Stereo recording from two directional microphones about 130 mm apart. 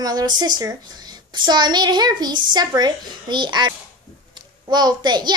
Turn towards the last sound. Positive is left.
turn(degrees=-35)  # may be behind; listen again after turning